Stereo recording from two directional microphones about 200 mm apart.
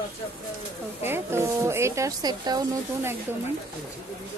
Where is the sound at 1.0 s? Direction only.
10° right (ahead or behind).